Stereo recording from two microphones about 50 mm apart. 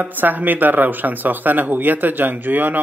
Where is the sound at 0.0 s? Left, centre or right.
Right.